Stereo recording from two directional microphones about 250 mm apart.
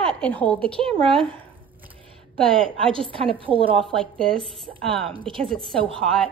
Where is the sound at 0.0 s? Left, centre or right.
Centre.